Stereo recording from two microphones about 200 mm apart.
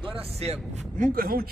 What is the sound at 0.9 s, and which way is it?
Speech, 45° right (ahead or behind).